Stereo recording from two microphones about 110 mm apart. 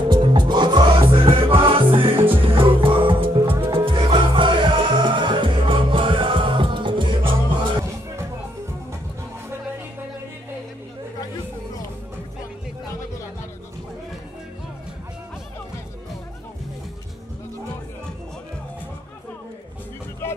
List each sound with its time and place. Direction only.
0.1 s music: 45° right (ahead or behind)
20.2 s music: 20° left (ahead or behind)